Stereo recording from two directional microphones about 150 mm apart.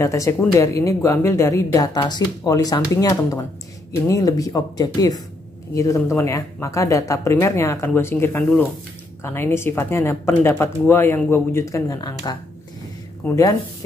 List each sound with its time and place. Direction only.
0.0 s speech: 20° left (ahead or behind)